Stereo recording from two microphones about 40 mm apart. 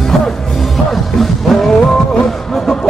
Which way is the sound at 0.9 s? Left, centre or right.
Centre.